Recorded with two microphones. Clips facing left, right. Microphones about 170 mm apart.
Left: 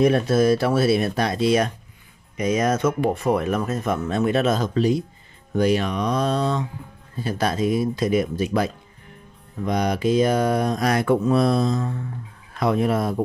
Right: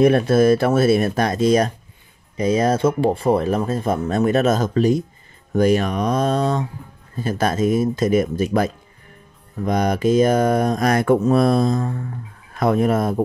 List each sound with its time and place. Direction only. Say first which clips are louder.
0.0 s speech: right 3 dB; 55° right (ahead or behind)
2.3 s speech: right 3 dB; 30° right (ahead or behind); by 13.2 s 45° right (ahead or behind)